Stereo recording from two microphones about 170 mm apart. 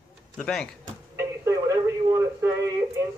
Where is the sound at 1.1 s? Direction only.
15° right (ahead or behind).